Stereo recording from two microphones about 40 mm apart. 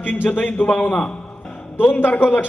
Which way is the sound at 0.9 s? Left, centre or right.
Left.